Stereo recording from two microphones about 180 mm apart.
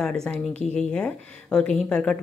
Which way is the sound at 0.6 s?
40° left (ahead or behind).